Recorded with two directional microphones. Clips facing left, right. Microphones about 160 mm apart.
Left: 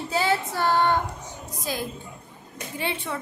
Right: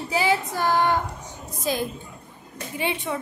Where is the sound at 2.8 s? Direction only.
15° right (ahead or behind).